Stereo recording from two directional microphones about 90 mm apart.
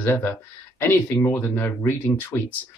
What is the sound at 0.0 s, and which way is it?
Speech, 25° left (ahead or behind).